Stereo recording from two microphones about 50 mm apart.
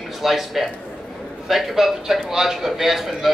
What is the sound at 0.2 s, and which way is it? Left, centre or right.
A man's voice, centre.